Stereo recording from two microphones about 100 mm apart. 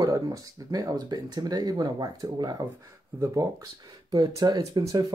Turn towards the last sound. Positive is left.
turn(degrees=-40)  # may be behind; listen again after turning